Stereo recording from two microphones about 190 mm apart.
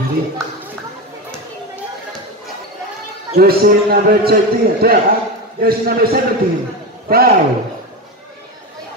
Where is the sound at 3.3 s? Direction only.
55° right (ahead or behind).